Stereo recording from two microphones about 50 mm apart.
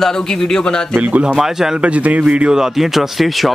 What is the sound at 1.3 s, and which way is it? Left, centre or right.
Speech, centre.